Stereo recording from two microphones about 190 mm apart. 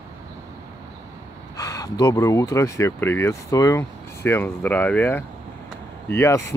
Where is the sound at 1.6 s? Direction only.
15° left (ahead or behind).